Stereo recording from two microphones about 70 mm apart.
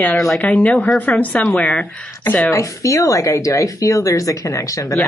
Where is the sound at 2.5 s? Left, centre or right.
Left.